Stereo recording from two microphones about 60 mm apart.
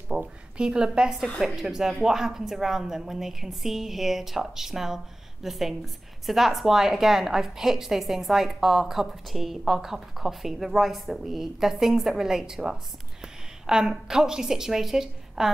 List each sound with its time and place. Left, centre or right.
0.1 s a woman's voice: centre